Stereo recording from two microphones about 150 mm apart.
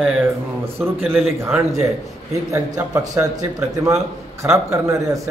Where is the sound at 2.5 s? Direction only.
20° right (ahead or behind).